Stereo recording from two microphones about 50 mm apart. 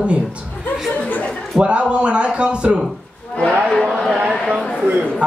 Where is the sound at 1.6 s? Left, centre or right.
Right.